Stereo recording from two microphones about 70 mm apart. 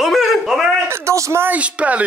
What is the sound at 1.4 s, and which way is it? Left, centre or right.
Speech, right.